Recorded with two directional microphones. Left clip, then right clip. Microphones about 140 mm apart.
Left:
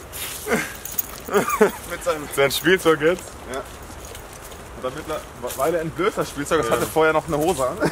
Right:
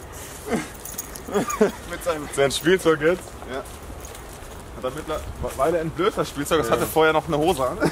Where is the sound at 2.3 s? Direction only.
10° left (ahead or behind).